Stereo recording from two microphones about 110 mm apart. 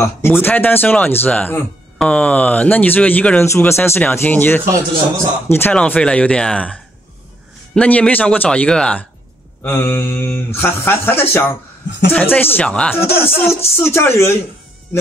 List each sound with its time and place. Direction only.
0.0 s speech: 20° left (ahead or behind)
5.8 s speech: 10° left (ahead or behind)
9.6 s speech: 20° left (ahead or behind)
13.2 s speech: 20° left (ahead or behind)